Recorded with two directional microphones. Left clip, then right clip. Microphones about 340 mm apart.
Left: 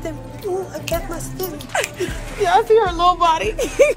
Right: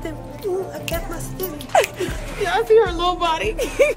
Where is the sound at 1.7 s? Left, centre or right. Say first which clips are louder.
Right 5 dB; right.